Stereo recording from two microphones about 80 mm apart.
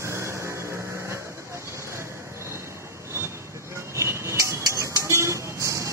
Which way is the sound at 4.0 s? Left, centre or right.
Right.